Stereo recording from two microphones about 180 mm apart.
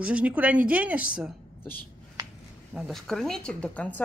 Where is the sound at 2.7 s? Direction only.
Centre (ahead or behind).